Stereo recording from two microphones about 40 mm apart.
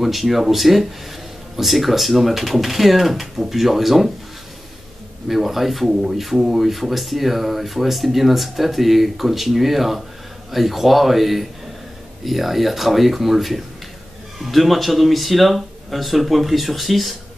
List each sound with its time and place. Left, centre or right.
0.0 s speech: centre
5.3 s speech: centre
5.9 s speech: centre